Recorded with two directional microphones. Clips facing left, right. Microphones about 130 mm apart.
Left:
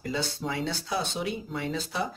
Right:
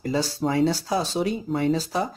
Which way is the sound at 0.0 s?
35° right (ahead or behind).